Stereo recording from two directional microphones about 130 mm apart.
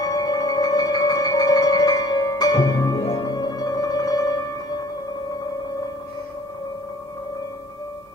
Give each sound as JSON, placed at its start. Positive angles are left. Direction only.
{"t": 0.0, "sound": "music", "side_deg": 30}